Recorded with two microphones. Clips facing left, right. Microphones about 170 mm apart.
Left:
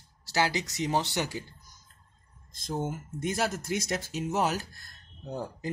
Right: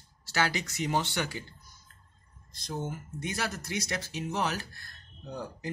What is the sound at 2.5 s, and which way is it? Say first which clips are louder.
Speech: left 3 dB; 50° left (ahead or behind).